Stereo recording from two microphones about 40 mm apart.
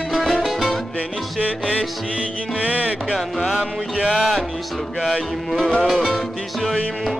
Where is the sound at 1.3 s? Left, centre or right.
Right.